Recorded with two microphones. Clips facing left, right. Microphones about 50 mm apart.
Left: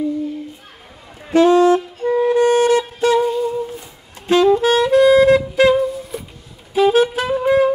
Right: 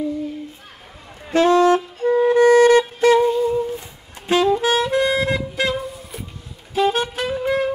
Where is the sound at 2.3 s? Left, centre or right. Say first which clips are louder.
Right 3 dB; right.